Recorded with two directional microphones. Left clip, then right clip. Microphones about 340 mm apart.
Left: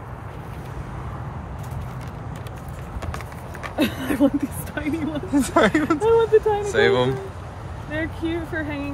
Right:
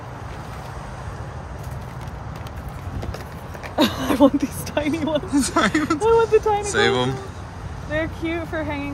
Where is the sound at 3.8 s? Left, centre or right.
Centre.